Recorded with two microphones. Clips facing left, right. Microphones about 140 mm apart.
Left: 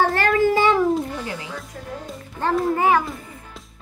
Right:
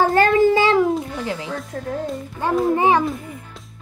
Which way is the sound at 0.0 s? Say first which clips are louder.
Right 4 dB; 20° right (ahead or behind).